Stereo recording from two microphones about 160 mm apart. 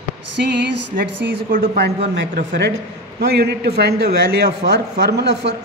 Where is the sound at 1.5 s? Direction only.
75° right (ahead or behind).